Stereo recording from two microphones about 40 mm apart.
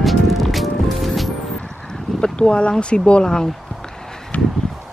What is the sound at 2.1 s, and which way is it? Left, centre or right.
Speech, centre.